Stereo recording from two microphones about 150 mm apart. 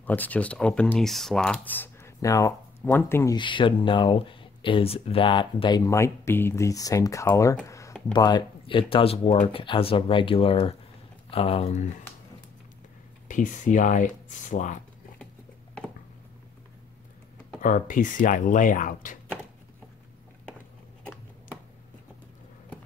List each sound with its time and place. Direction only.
0.0 s speech: 10° left (ahead or behind)
3.3 s speech: 35° left (ahead or behind); by 11.9 s 50° left (ahead or behind)
13.3 s speech: 60° left (ahead or behind)
17.6 s speech: 60° left (ahead or behind)